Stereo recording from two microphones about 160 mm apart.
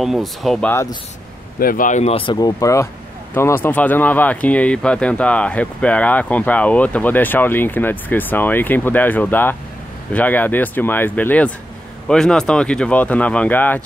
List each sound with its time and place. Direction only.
0.0 s speech: centre (ahead or behind)
0.7 s speech: 15° left (ahead or behind)
1.6 s speech: 60° left (ahead or behind); by 13.8 s 10° left (ahead or behind)